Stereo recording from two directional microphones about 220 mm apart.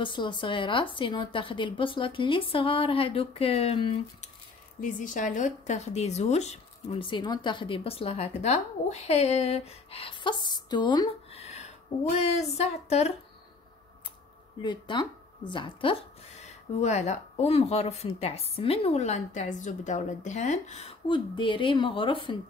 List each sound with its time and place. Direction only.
0.0 s speech: 20° left (ahead or behind)
4.7 s speech: 35° left (ahead or behind)
14.6 s speech: 20° left (ahead or behind)